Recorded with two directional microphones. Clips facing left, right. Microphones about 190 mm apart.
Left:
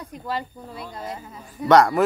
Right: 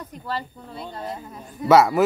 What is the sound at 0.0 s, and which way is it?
Snake, 15° left (ahead or behind).